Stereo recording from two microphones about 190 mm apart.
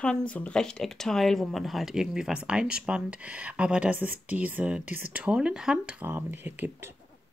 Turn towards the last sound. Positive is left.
turn(degrees=-10)  # may be behind; listen again after turning